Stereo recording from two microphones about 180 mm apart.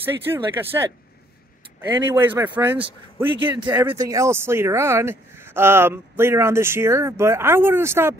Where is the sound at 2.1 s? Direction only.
10° right (ahead or behind).